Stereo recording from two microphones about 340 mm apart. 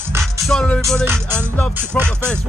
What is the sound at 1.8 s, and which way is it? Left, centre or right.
Speech, centre.